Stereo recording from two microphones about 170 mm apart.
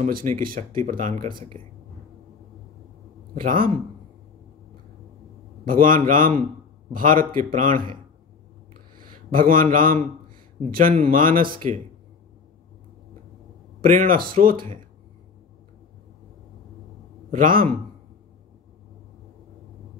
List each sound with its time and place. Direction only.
0.0 s speech: 55° right (ahead or behind)
3.3 s speech: 55° right (ahead or behind)
5.7 s speech: 55° right (ahead or behind)
8.9 s a man's voice: 55° right (ahead or behind)
11.1 s speech: 55° right (ahead or behind)
13.7 s speech: 55° right (ahead or behind)
17.3 s a man's voice: 55° right (ahead or behind)